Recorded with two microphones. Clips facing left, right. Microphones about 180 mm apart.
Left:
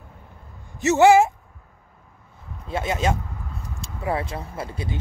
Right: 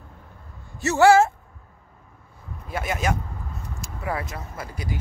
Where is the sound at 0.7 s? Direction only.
20° left (ahead or behind).